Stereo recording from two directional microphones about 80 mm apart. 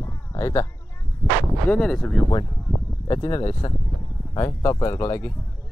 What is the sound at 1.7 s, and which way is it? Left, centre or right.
Speech, centre.